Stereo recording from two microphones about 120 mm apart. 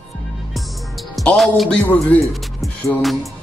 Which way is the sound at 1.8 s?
15° left (ahead or behind).